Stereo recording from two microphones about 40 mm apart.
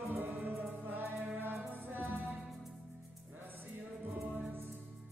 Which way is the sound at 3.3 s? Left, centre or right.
Right.